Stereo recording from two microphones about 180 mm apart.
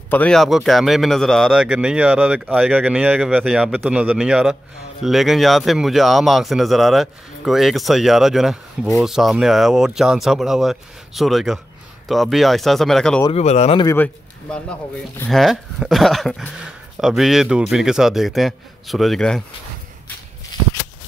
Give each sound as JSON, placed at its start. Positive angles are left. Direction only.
{"t": 0.1, "sound": "speech", "side_deg": 5}
{"t": 13.3, "sound": "speech", "side_deg": 40}
{"t": 13.9, "sound": "speech", "side_deg": 10}
{"t": 20.5, "sound": "a sound", "side_deg": 25}